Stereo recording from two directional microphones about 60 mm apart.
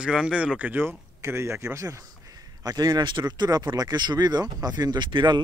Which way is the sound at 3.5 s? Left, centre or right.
Right.